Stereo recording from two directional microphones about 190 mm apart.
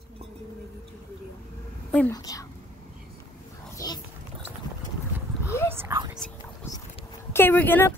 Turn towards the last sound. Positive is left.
turn(degrees=10)  # may be behind; listen again after turning